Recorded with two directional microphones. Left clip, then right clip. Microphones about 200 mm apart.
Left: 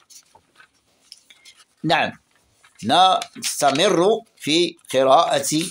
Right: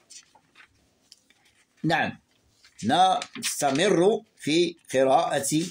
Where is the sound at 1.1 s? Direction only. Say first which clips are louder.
Left 9 dB; 20° left (ahead or behind).